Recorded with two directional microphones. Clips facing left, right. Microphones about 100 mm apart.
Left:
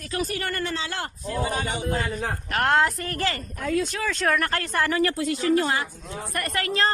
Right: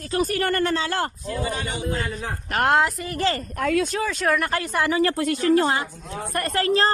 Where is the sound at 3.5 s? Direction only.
70° right (ahead or behind).